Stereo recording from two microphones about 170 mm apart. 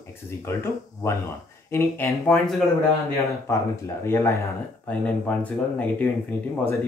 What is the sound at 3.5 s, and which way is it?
Speech, 15° left (ahead or behind).